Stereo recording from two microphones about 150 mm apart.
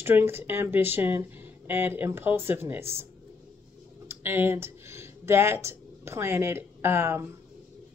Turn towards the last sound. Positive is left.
turn(degrees=-15)  # may be behind; listen again after turning